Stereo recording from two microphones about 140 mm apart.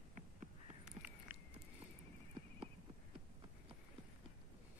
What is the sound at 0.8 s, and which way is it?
Crow, 10° right (ahead or behind).